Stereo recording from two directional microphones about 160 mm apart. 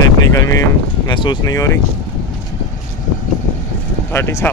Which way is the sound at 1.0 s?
30° left (ahead or behind).